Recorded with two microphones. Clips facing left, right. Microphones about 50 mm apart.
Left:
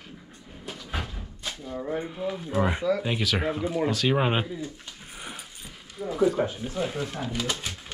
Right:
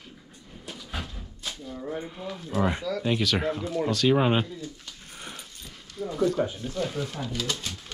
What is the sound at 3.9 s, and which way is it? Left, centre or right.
Speech, centre.